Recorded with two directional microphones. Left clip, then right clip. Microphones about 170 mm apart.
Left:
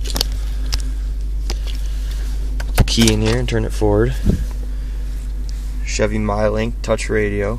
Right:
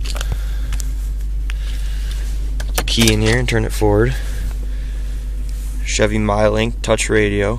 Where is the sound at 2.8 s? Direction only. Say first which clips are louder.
Even; 20° left (ahead or behind).